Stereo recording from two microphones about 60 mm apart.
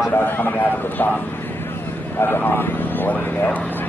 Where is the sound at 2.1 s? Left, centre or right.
Left.